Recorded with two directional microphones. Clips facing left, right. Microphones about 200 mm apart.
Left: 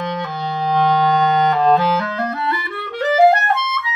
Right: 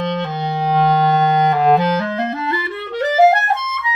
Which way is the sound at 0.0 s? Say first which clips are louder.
Right 3 dB; 25° right (ahead or behind).